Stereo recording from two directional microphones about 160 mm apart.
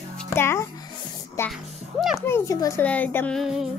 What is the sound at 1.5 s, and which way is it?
Speech, centre (ahead or behind).